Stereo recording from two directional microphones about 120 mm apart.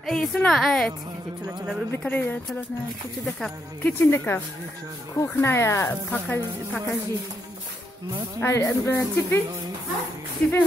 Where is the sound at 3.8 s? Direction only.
20° left (ahead or behind).